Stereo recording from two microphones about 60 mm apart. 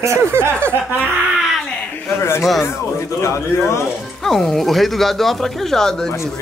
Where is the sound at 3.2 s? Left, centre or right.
Left.